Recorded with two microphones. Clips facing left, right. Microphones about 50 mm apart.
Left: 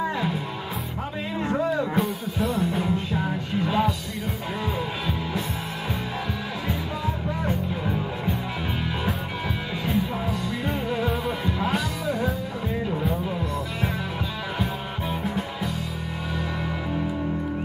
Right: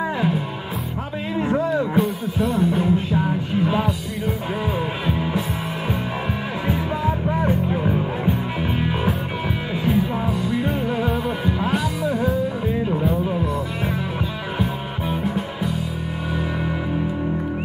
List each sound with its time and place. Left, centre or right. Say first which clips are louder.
0.0 s music: right 4 dB; centre
1.6 s music: right 2 dB; centre
7.4 s music: right 5 dB; right
9.8 s music: right 5 dB; centre
15.2 s music: right 4 dB; centre